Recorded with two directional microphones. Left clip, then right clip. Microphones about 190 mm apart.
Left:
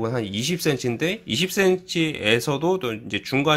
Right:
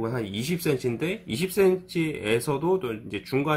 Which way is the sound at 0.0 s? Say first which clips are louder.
Left 4 dB; 45° left (ahead or behind).